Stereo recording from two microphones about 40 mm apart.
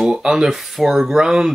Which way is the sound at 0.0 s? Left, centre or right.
Centre.